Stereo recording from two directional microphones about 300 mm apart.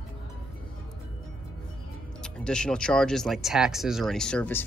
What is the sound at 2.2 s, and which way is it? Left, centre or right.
Speech, centre.